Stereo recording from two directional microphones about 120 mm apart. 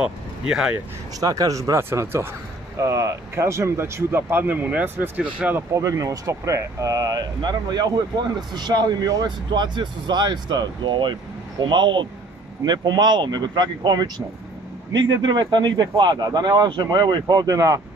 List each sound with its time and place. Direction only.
0.0 s speech: 5° right (ahead or behind)
1.2 s speech: 30° right (ahead or behind); by 5.6 s 10° right (ahead or behind)
5.7 s speech: 30° right (ahead or behind)